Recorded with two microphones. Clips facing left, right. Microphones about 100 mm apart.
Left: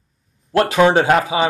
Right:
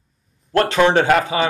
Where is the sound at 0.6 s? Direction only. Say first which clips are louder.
Left 1 dB; 15° left (ahead or behind).